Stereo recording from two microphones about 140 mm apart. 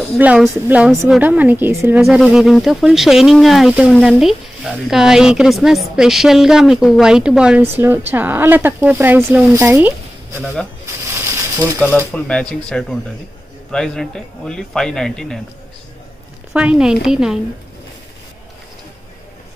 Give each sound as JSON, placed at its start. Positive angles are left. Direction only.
{"t": 0.2, "sound": "speech", "side_deg": -10}
{"t": 2.0, "sound": "speech", "side_deg": 0}
{"t": 10.4, "sound": "speech", "side_deg": 0}
{"t": 11.1, "sound": "mechanisms", "side_deg": -20}
{"t": 12.1, "sound": "speech", "side_deg": 5}
{"t": 16.5, "sound": "speech", "side_deg": -5}